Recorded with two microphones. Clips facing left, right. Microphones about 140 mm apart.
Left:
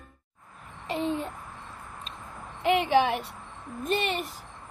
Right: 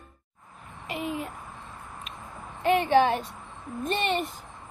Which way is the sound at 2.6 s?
15° left (ahead or behind).